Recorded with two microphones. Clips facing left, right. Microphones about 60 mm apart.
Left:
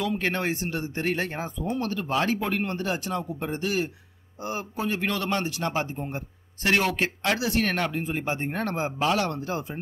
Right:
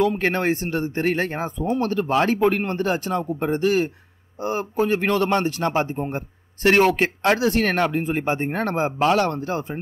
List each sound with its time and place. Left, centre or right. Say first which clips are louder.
0.0 s speech: right 6 dB; right